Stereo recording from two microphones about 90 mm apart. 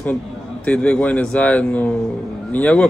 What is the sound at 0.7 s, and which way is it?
A man's voice, 15° left (ahead or behind).